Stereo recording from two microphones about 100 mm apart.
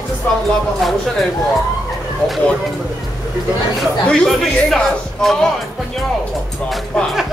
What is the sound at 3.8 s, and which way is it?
Speech, 5° left (ahead or behind).